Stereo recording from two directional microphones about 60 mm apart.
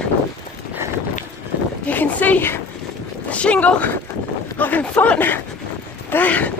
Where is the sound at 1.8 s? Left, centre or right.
Left.